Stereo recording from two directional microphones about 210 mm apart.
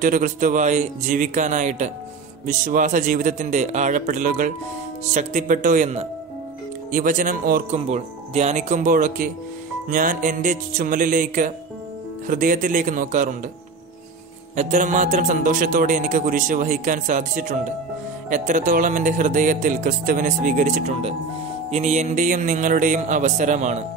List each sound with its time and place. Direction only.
0.0 s a man's voice: 40° right (ahead or behind)
14.5 s a man's voice: 35° right (ahead or behind)